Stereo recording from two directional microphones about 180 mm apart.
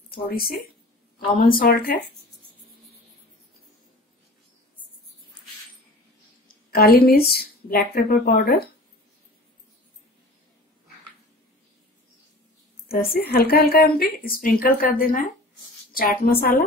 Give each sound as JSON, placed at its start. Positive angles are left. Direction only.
{"t": 0.1, "sound": "a woman's voice", "side_deg": 55}
{"t": 6.7, "sound": "a woman's voice", "side_deg": 55}
{"t": 12.8, "sound": "a woman's voice", "side_deg": 55}